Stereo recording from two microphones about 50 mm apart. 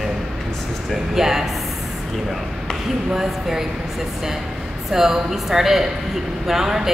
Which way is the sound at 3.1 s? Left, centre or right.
Centre.